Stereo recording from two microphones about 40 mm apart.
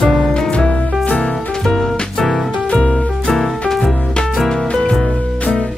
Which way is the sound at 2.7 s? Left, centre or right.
Centre.